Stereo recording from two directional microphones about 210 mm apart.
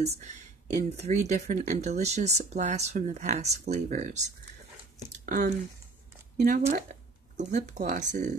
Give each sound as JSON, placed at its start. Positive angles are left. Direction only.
{"t": 0.0, "sound": "speech", "side_deg": -35}
{"t": 6.7, "sound": "speech", "side_deg": -40}